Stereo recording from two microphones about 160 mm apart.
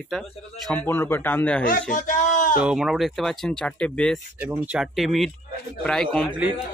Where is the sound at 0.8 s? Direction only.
15° left (ahead or behind).